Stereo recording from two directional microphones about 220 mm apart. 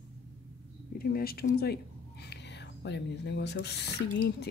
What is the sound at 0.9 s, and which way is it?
Speech, 40° left (ahead or behind).